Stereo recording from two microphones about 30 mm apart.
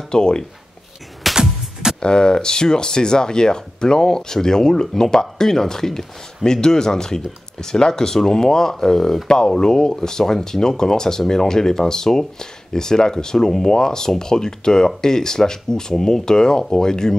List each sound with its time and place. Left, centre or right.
0.1 s speech: left
1.3 s music: right
2.0 s speech: left